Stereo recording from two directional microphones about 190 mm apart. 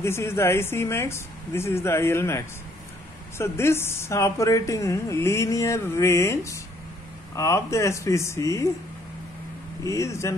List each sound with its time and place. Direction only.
0.0 s a woman's voice: 15° left (ahead or behind)
9.8 s a woman's voice: 15° left (ahead or behind)